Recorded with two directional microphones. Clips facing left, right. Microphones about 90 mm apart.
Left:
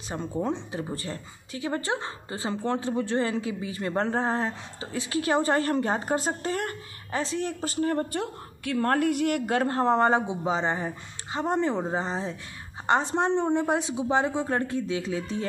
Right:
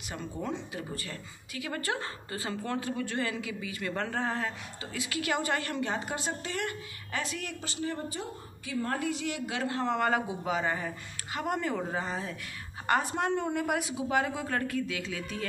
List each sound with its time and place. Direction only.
0.1 s speech: 30° left (ahead or behind)
7.6 s a woman's voice: 45° left (ahead or behind); by 15.4 s 30° left (ahead or behind)